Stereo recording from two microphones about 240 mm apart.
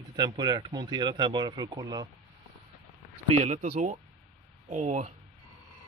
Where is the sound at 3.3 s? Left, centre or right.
Right.